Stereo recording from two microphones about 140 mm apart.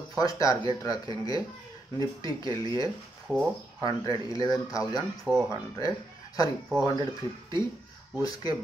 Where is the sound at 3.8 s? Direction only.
35° right (ahead or behind).